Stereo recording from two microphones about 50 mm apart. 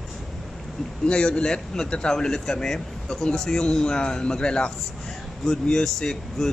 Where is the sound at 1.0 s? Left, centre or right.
Centre.